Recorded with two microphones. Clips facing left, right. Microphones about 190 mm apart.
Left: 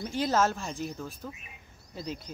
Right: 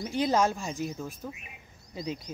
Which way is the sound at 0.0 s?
10° right (ahead or behind).